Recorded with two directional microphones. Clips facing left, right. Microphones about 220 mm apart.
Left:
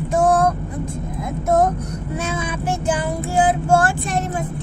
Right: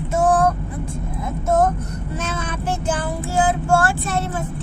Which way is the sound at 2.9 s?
15° left (ahead or behind).